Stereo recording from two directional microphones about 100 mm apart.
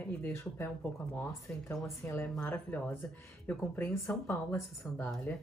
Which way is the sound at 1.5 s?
10° left (ahead or behind).